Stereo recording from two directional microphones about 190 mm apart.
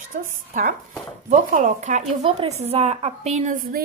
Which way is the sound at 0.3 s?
45° right (ahead or behind).